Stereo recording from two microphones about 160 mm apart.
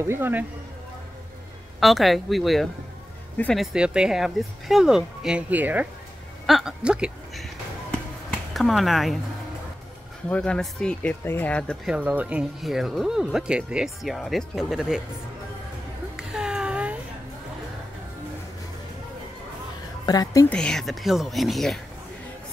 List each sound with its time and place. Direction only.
0.0 s speech: 15° right (ahead or behind)
1.8 s speech: centre (ahead or behind)
3.7 s speech: 5° right (ahead or behind)
10.3 s speech: 5° left (ahead or behind)
11.9 s speech: 10° right (ahead or behind)
16.2 s a sound: 5° right (ahead or behind)
20.1 s a woman's voice: 25° left (ahead or behind)
20.4 s speech: 5° left (ahead or behind)